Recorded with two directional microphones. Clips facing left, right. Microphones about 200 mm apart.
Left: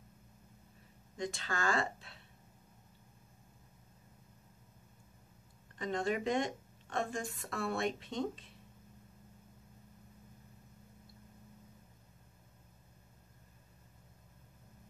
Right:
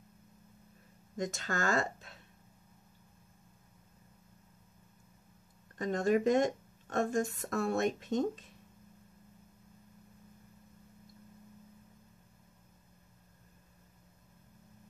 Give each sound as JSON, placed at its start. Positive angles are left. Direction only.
{"t": 1.1, "sound": "speech", "side_deg": -45}
{"t": 5.8, "sound": "a woman's voice", "side_deg": -45}